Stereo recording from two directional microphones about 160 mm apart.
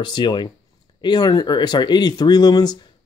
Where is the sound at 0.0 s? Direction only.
30° left (ahead or behind).